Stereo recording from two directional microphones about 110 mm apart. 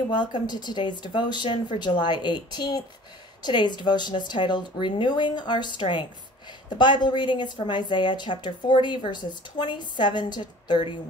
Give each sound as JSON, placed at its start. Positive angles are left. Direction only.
{"t": 0.1, "sound": "speech", "side_deg": 40}